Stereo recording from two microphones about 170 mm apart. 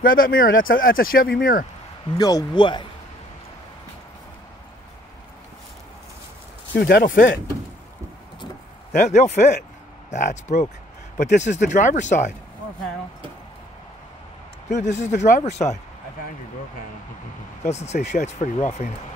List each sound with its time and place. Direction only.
0.0 s speech: 55° left (ahead or behind)
2.1 s speech: 25° left (ahead or behind)
6.7 s speech: 70° left (ahead or behind)
8.9 s speech: 45° left (ahead or behind)
14.7 s speech: 45° left (ahead or behind)
17.6 s speech: 40° left (ahead or behind)